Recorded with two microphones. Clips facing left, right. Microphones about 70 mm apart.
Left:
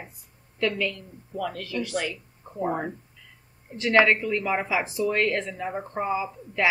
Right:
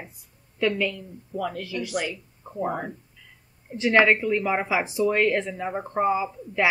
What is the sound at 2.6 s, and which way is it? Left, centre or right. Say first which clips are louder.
Speech: left 2 dB; centre.